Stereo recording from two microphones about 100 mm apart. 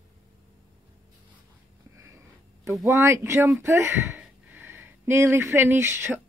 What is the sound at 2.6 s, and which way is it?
Speech, 30° right (ahead or behind).